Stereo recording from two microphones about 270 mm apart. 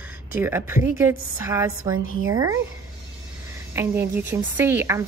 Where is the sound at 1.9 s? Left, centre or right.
Right.